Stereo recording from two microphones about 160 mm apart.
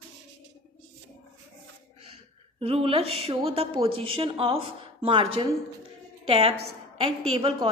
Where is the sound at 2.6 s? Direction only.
35° right (ahead or behind).